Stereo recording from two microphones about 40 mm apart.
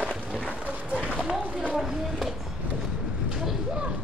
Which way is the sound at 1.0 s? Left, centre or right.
Right.